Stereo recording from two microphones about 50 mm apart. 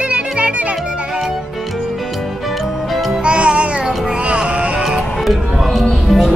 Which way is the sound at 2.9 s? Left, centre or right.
Centre.